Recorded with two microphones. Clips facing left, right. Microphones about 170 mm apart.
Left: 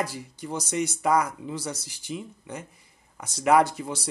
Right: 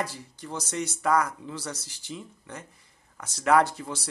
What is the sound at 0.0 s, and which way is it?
Speech, 10° left (ahead or behind).